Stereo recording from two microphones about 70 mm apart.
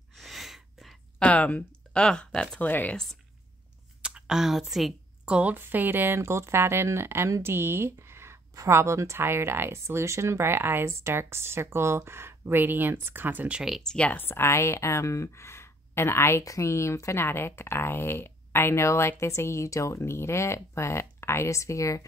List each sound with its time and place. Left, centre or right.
0.1 s a sound: centre
1.2 s speech: left
2.6 s speech: left
4.0 s a sound: centre
5.3 s a woman's voice: right
13.8 s speech: centre
14.1 s speech: left